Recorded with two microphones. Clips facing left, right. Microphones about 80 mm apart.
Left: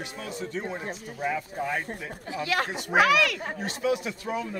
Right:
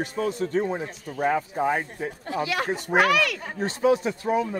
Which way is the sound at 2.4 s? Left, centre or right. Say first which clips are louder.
Right 1 dB; centre.